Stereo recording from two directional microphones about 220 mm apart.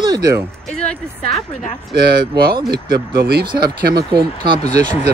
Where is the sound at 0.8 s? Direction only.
5° left (ahead or behind).